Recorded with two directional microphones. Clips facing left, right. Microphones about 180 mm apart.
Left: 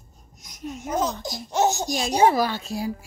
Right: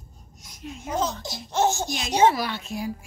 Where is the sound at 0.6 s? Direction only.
40° left (ahead or behind).